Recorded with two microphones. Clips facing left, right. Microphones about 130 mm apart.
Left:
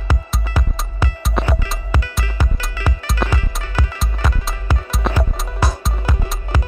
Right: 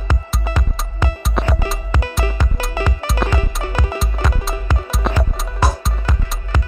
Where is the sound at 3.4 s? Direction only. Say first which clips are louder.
Right 3 dB; 20° right (ahead or behind).